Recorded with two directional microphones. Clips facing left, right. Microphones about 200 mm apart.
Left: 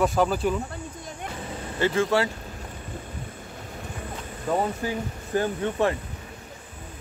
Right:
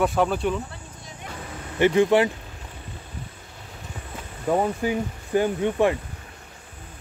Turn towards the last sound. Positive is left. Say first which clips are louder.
# right 3 dB
turn(degrees=-15)  # may be behind; listen again after turning